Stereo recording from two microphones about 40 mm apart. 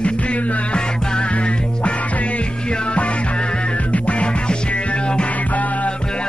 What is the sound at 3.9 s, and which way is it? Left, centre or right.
Music, left.